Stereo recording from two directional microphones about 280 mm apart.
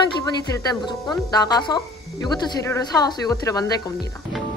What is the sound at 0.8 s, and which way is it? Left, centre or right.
Speech, centre.